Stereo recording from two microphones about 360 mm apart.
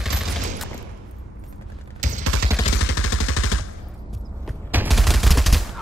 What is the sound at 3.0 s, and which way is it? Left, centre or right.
Machine gun, left.